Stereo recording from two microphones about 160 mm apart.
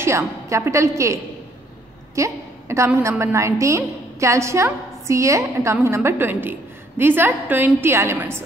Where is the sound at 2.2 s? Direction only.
20° right (ahead or behind).